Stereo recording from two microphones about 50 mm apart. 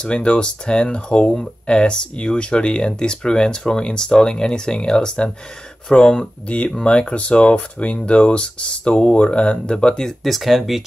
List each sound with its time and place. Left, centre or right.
0.0 s speech: left
10.0 s speech: centre